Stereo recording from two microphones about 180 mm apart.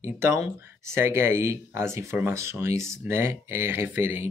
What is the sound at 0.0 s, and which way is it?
Speech, 15° right (ahead or behind).